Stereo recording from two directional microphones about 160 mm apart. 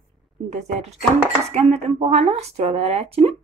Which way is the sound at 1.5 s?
45° right (ahead or behind).